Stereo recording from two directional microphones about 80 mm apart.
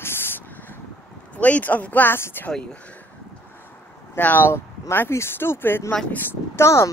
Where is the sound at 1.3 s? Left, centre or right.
Centre.